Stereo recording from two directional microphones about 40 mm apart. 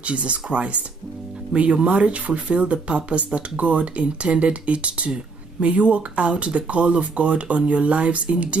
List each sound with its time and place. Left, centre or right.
0.0 s speech: right